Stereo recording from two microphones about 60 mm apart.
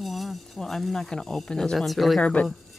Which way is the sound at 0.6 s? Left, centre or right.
Centre.